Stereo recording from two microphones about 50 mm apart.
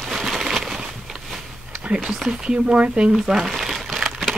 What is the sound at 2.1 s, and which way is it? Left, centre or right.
Speech, centre.